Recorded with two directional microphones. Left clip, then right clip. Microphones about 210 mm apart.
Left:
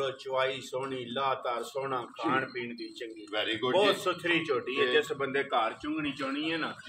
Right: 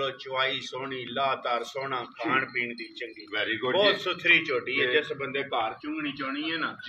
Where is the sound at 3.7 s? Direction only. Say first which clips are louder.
Right 2 dB; 35° left (ahead or behind).